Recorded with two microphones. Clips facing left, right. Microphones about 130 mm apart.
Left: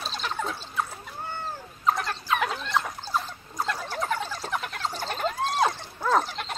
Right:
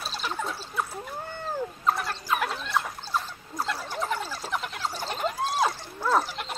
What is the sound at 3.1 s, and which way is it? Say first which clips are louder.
Dog: left 1 dB; 5° right (ahead or behind).